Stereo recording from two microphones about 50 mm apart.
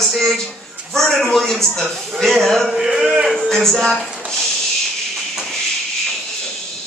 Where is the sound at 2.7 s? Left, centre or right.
Centre.